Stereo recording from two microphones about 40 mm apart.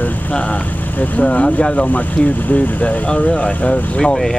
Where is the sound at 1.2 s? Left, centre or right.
Left.